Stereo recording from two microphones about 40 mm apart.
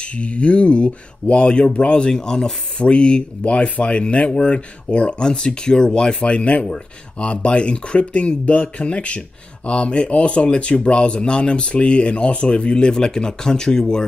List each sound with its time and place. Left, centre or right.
0.0 s speech: left
6.2 s speech: left